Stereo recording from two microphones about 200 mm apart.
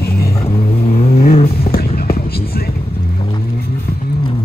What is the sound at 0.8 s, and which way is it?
Vehicle, 35° left (ahead or behind).